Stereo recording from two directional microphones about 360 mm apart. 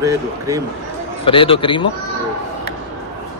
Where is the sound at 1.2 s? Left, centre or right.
Centre.